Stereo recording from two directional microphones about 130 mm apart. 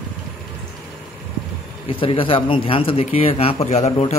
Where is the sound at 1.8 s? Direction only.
40° left (ahead or behind).